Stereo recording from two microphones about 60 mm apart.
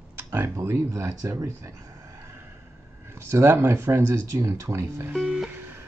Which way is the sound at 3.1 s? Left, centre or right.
Right.